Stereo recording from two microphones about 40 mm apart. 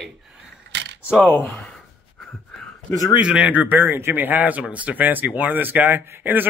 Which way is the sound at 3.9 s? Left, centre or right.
Right.